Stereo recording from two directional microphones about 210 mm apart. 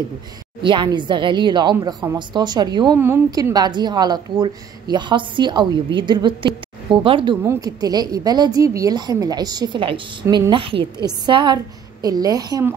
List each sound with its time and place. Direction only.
0.6 s a woman's voice: 20° right (ahead or behind)